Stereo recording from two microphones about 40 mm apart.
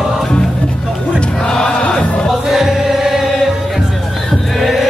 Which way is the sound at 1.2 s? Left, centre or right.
Left.